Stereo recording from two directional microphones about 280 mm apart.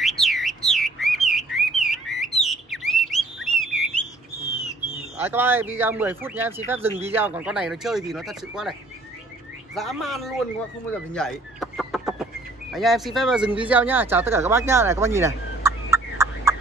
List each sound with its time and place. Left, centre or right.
0.0 s bird: centre
5.1 s speech: centre
6.9 s speech: right
7.2 s speech: centre
9.8 s speech: centre
10.9 s chicken: centre
12.7 s speech: centre